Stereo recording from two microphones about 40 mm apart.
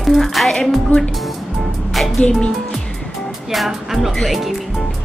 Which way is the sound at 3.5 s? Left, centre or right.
Centre.